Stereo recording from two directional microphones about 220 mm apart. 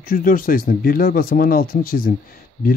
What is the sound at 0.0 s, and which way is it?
Speech, 40° left (ahead or behind).